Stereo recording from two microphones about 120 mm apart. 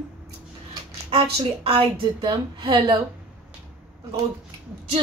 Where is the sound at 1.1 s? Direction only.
50° right (ahead or behind).